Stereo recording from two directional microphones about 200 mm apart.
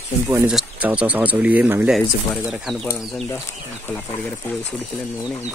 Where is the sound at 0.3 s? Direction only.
5° right (ahead or behind).